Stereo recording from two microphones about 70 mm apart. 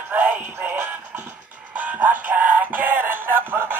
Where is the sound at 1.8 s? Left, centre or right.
Right.